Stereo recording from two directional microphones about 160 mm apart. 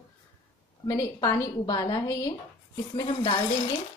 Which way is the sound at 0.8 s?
25° left (ahead or behind).